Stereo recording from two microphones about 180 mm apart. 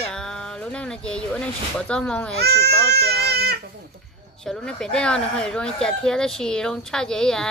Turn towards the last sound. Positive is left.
turn(degrees=5)  # may be behind; listen again after turning